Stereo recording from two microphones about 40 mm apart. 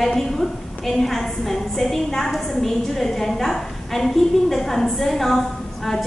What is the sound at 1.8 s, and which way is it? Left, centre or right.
A woman's voice, centre.